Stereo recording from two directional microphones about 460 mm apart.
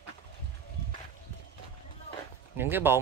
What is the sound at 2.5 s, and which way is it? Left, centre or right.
Speech, centre.